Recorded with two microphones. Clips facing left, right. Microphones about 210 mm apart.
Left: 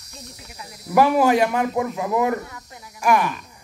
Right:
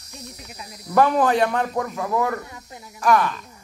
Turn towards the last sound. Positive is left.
turn(degrees=15)  # may be behind; listen again after turning